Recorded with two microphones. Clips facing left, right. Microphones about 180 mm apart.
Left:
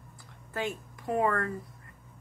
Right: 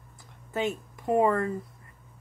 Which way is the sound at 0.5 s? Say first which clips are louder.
Right 4 dB; 20° right (ahead or behind).